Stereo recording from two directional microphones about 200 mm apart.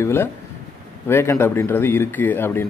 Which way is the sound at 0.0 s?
10° left (ahead or behind).